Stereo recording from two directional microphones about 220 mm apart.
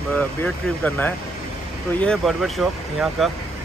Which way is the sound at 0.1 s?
5° left (ahead or behind).